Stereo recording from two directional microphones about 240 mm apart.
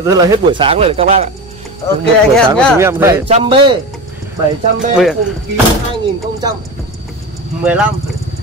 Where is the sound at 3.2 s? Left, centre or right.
Right.